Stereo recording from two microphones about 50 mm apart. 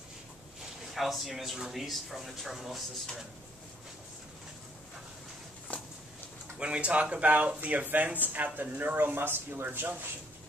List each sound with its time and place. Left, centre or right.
0.8 s speech: centre
5.7 s walk: left
6.6 s speech: right